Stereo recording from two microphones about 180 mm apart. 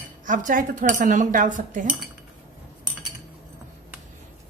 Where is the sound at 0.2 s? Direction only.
45° right (ahead or behind).